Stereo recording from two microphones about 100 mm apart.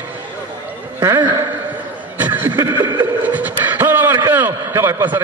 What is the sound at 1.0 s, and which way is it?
Speech, 35° right (ahead or behind).